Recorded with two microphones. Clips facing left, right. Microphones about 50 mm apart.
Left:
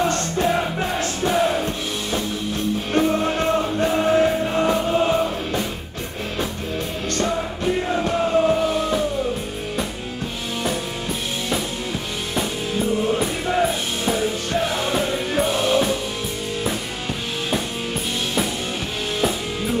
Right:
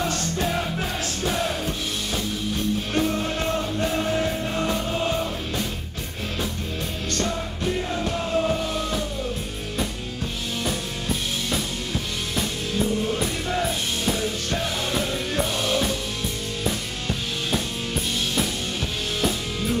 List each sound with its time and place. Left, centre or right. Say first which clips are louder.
0.1 s music: left 5 dB; centre
2.9 s music: left 8 dB; centre
7.2 s music: left 5 dB; centre
13.0 s music: left 4 dB; centre
19.2 s music: left 2 dB; centre